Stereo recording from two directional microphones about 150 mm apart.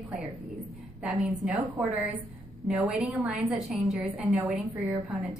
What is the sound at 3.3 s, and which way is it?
A woman's voice, centre (ahead or behind).